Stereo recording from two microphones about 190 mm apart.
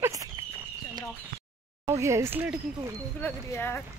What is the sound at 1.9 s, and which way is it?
Speech, 15° right (ahead or behind).